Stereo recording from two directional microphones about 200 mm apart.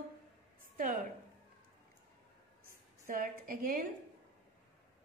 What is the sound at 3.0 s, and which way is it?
Speech, 45° right (ahead or behind).